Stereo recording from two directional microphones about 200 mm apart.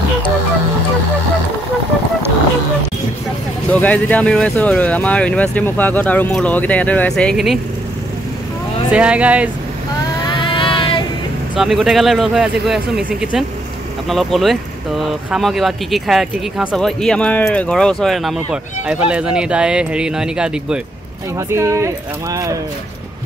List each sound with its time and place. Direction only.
3.8 s speech: 5° left (ahead or behind)
8.9 s speech: 5° right (ahead or behind)
10.2 s vehicle: 25° left (ahead or behind)
11.5 s speech: centre (ahead or behind)